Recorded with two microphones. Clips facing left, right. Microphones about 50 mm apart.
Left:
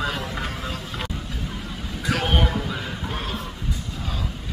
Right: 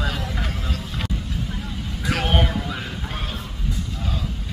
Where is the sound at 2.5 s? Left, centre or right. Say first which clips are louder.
Even; centre.